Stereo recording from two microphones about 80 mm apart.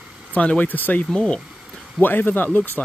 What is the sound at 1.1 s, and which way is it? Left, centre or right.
Speech, centre.